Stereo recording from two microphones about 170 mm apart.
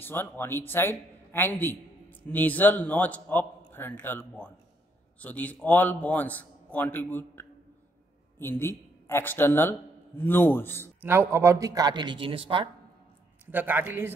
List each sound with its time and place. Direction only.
0.0 s a man's voice: 15° left (ahead or behind)
11.0 s speech: 15° right (ahead or behind); by 12.6 s 30° right (ahead or behind)
13.5 s a man's voice: 10° right (ahead or behind)